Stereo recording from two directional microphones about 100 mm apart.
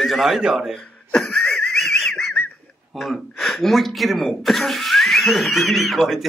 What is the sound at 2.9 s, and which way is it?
Speech, centre (ahead or behind).